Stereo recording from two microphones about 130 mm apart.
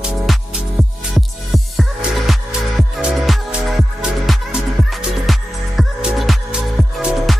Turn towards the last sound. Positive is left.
turn(degrees=-5)  # may be behind; listen again after turning